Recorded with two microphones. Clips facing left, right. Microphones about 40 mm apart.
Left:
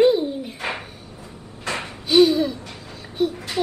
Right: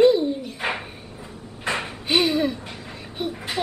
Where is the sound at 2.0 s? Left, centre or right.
Right.